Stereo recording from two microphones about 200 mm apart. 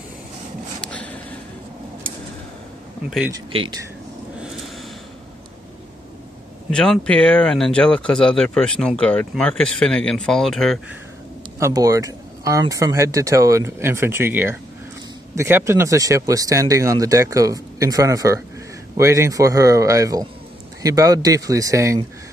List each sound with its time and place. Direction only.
0.7 s a sound: 5° left (ahead or behind)
3.5 s speech: 25° right (ahead or behind)
6.7 s speech: 5° left (ahead or behind)
11.6 s speech: 15° right (ahead or behind)